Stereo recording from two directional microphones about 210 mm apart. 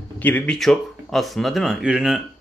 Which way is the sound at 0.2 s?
10° left (ahead or behind).